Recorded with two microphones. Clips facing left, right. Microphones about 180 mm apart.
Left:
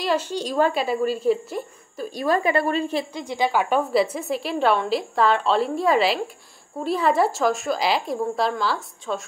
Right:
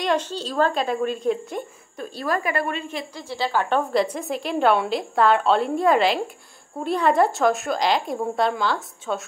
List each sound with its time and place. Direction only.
0.0 s speech: 5° left (ahead or behind)
2.1 s a woman's voice: 25° left (ahead or behind)
3.2 s a woman's voice: 15° left (ahead or behind); by 9.2 s centre (ahead or behind)